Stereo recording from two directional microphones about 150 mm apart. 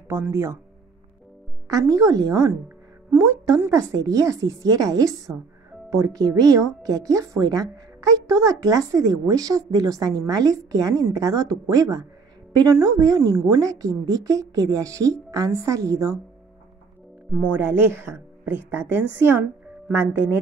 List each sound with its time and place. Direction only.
0.1 s speech: 20° right (ahead or behind)
1.7 s a woman's voice: 25° right (ahead or behind)
17.3 s speech: 10° right (ahead or behind)